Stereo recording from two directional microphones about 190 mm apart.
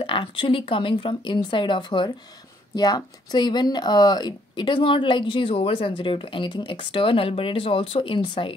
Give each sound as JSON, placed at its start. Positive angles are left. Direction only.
{"t": 0.0, "sound": "speech", "side_deg": 25}